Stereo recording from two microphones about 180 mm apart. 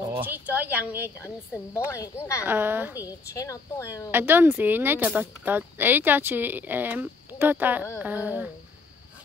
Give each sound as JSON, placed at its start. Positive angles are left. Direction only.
{"t": 0.2, "sound": "speech", "side_deg": -10}
{"t": 1.2, "sound": "a woman's voice", "side_deg": 15}
{"t": 2.4, "sound": "speech", "side_deg": -10}
{"t": 3.0, "sound": "a woman's voice", "side_deg": 20}
{"t": 4.1, "sound": "speech", "side_deg": -10}